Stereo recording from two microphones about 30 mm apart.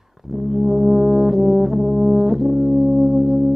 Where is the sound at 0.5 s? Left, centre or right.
Centre.